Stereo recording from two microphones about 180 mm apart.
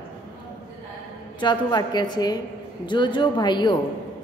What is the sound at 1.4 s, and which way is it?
A woman's voice, 25° left (ahead or behind).